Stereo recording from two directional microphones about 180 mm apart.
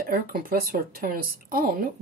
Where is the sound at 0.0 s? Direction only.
55° right (ahead or behind).